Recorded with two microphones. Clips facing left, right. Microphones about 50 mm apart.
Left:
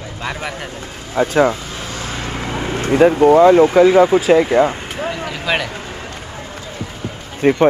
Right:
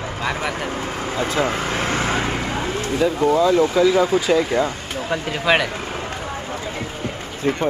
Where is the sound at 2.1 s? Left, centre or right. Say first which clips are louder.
Right 3 dB; centre.